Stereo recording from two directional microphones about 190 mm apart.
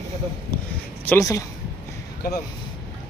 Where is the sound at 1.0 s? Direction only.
15° left (ahead or behind).